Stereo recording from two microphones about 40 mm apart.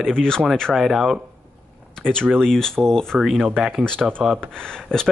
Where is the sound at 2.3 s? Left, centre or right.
Centre.